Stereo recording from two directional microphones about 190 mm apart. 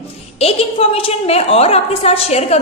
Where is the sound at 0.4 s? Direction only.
30° left (ahead or behind).